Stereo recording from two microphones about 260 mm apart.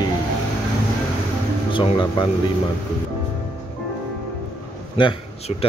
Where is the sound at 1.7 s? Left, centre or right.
Centre.